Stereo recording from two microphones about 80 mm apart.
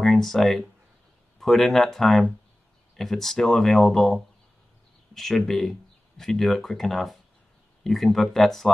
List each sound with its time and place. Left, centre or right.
0.0 s speech: centre